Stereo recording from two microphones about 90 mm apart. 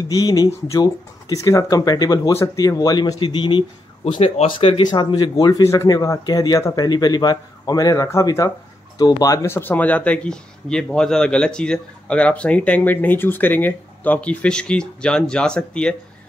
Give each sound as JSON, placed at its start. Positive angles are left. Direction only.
{"t": 0.1, "sound": "speech", "side_deg": 40}
{"t": 3.2, "sound": "speech", "side_deg": 65}
{"t": 4.5, "sound": "speech", "side_deg": 80}
{"t": 4.8, "sound": "speech", "side_deg": 50}
{"t": 5.9, "sound": "speech", "side_deg": 45}
{"t": 9.5, "sound": "speech", "side_deg": 20}